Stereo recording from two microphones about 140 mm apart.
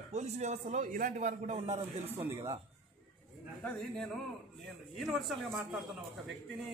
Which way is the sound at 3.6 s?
10° left (ahead or behind).